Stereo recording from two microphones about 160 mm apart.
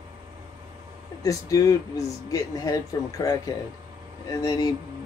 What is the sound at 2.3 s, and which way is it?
Speech, 20° left (ahead or behind).